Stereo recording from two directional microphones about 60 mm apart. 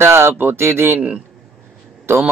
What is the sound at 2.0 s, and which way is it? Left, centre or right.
Speech, right.